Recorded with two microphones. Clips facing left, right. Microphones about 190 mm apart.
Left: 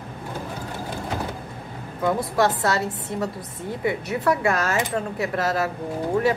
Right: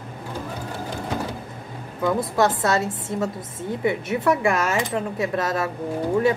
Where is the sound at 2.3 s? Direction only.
25° right (ahead or behind).